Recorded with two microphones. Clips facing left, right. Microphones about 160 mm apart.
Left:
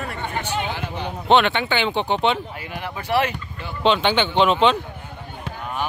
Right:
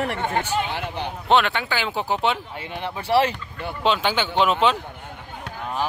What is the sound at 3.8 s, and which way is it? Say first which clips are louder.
Speech: left 3 dB; 5° right (ahead or behind).